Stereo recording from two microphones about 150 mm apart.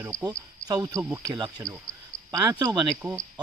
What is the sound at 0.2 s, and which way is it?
Speech, 25° right (ahead or behind).